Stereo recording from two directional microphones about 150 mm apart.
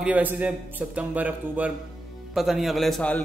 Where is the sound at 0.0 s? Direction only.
10° right (ahead or behind).